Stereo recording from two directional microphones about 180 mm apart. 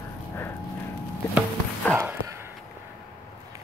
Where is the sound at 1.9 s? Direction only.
15° right (ahead or behind).